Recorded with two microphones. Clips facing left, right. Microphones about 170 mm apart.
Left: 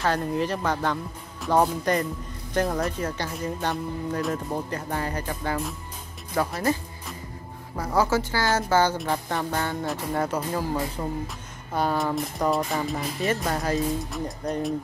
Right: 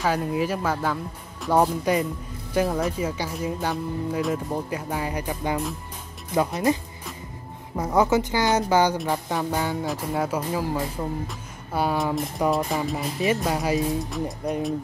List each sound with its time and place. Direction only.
0.0 s speech: 5° right (ahead or behind)